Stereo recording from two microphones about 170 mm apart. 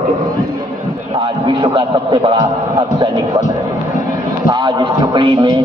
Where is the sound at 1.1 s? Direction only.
30° right (ahead or behind).